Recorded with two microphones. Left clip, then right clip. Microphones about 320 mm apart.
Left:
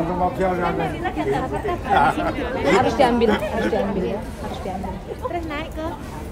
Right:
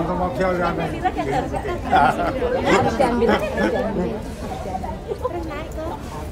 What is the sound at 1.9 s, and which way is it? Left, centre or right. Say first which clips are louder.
Speech: right 1 dB; centre.